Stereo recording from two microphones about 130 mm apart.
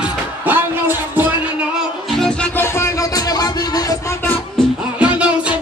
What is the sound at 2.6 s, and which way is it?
Music, 20° left (ahead or behind).